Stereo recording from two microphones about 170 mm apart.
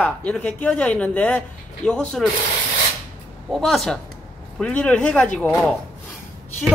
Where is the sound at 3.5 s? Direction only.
Centre (ahead or behind).